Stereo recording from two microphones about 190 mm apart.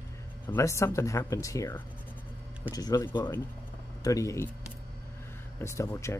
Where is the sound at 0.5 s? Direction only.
15° left (ahead or behind).